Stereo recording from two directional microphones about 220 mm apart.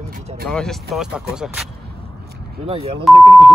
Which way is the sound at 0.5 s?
Centre (ahead or behind).